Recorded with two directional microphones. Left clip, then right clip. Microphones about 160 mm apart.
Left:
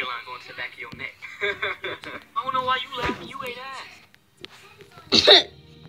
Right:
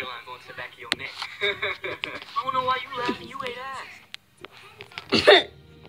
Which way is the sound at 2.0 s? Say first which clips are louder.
Right 1 dB; centre (ahead or behind).